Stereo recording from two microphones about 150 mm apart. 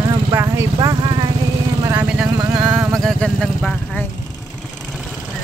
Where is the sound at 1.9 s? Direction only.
5° right (ahead or behind).